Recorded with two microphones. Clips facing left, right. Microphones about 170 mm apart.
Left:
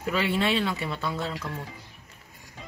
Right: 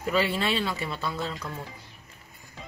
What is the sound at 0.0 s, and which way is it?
Speech, 15° left (ahead or behind).